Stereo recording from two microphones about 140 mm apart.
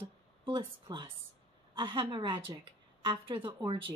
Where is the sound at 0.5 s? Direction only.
35° right (ahead or behind).